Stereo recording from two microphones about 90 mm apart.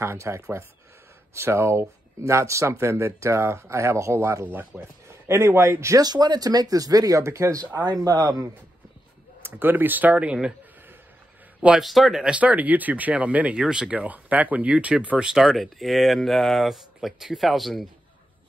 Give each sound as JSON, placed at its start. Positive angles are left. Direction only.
{"t": 0.0, "sound": "speech", "side_deg": -30}
{"t": 6.0, "sound": "speech", "side_deg": -50}
{"t": 7.6, "sound": "speech", "side_deg": -45}
{"t": 9.4, "sound": "speech", "side_deg": -25}
{"t": 11.8, "sound": "speech", "side_deg": 0}